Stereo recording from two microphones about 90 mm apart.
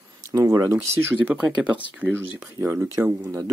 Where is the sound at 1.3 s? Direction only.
15° right (ahead or behind).